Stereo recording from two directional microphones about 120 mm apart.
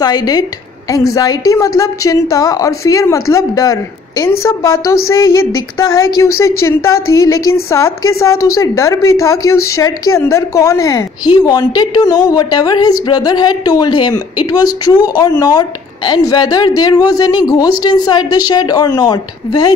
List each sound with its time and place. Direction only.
0.0 s a woman's voice: 35° left (ahead or behind)